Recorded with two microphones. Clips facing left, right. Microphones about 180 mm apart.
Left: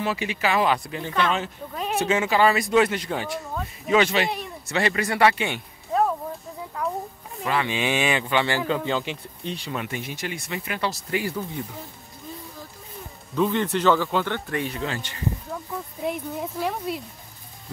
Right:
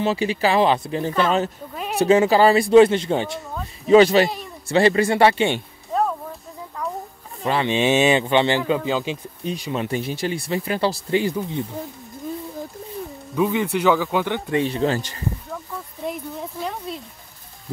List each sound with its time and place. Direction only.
0.0 s speech: 30° right (ahead or behind)
5.9 s a sound: centre (ahead or behind)
7.4 s speech: 25° right (ahead or behind); by 9.8 s 10° right (ahead or behind)
9.8 s speech: 35° right (ahead or behind)
13.4 s speech: 10° right (ahead or behind); by 15.2 s 40° right (ahead or behind)
16.0 s speech: 5° left (ahead or behind)